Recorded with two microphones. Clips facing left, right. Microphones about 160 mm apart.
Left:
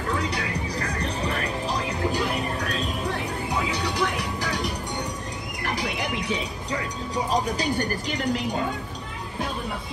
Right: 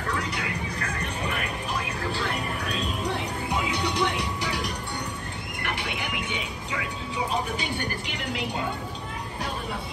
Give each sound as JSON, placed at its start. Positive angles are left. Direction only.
{"t": 0.7, "sound": "music", "side_deg": 35}
{"t": 3.5, "sound": "music", "side_deg": -20}
{"t": 5.6, "sound": "a sound", "side_deg": 35}
{"t": 7.2, "sound": "speech", "side_deg": 40}